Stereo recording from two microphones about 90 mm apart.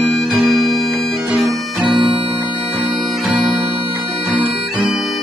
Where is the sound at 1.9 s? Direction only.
75° right (ahead or behind).